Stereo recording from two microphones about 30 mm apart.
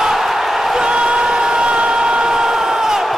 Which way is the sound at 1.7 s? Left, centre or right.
Right.